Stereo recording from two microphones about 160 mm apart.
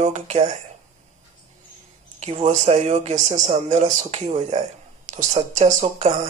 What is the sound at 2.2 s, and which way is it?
Speech, 45° right (ahead or behind).